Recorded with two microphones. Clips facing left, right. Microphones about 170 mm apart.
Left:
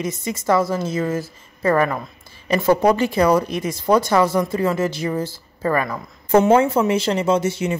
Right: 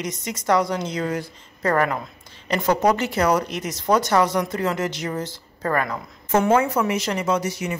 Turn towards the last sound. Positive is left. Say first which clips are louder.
# left 4 dB
turn(degrees=25)  # may be behind; listen again after turning